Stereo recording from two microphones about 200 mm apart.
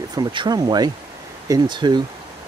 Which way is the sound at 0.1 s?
20° right (ahead or behind).